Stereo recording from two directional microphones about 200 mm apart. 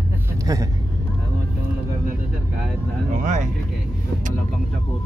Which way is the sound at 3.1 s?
40° right (ahead or behind).